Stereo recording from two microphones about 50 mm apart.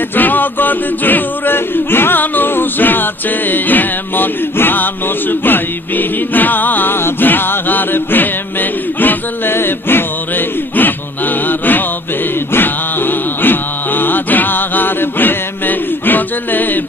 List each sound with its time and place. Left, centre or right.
0.1 s a capella: left
5.4 s music: left
11.4 s mantra: left
12.5 s a sound: left